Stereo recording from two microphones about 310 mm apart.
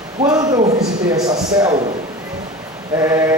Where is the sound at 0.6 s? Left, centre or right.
Right.